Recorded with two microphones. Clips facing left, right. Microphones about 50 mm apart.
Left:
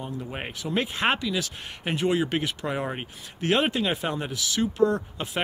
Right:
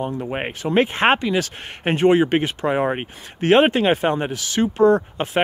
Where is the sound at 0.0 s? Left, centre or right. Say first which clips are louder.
Right 9 dB; right.